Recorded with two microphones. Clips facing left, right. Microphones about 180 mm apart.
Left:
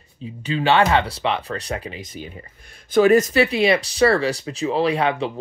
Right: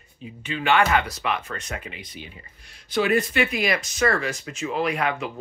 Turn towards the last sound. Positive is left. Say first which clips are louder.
# left 5 dB
turn(degrees=30)  # may be behind; listen again after turning